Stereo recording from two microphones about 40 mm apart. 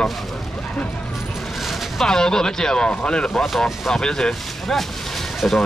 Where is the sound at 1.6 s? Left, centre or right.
Centre.